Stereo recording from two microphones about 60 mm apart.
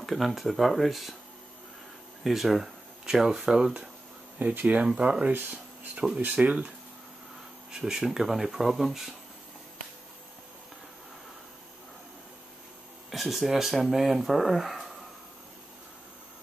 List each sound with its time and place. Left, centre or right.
0.0 s speech: centre
2.2 s speech: centre
4.4 s speech: right
7.7 s speech: centre
13.1 s speech: centre